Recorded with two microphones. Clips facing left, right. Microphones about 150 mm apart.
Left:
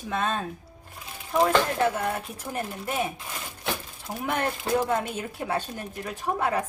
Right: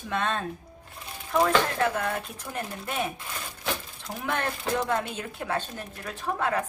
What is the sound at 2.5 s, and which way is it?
Speech, 15° left (ahead or behind).